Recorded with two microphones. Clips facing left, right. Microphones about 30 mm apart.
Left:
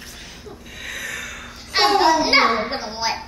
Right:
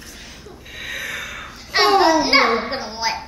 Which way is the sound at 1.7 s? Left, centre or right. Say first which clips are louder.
Right 2 dB; centre.